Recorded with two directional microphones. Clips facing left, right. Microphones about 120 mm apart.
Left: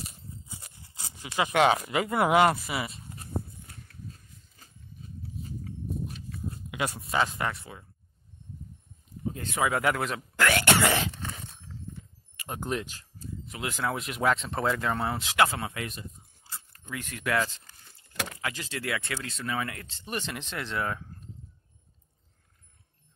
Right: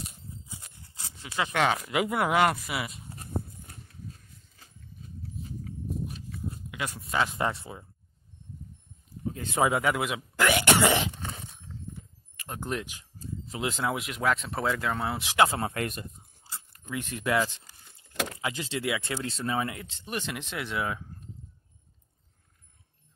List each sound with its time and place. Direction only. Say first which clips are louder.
0.0 s a sound: even; centre (ahead or behind)
1.4 s speech: left 3 dB; 15° left (ahead or behind)
1.9 s speech: left 2 dB; centre (ahead or behind)
3.1 s a sound: even; 45° right (ahead or behind)
5.4 s walk: even; centre (ahead or behind)
7.3 s speech: right 3 dB; 25° right (ahead or behind)
9.4 s speech: right 3 dB; 20° right (ahead or behind)
9.8 s speech: even; 5° right (ahead or behind)
12.4 s speech: left 1 dB; 5° left (ahead or behind)
13.5 s speech: right 2 dB; 25° right (ahead or behind)
14.1 s speech: left 1 dB; centre (ahead or behind)
15.2 s speech: right 2 dB; 20° right (ahead or behind)
15.6 s speech: right 4 dB; 50° right (ahead or behind)
16.9 s speech: right 2 dB; 25° right (ahead or behind); by 21.0 s 10° right (ahead or behind)